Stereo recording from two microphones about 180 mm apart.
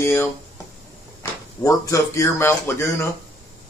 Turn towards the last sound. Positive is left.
turn(degrees=15)  # may be behind; listen again after turning